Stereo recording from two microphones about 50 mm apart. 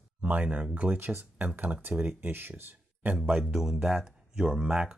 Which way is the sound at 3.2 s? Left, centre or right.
Centre.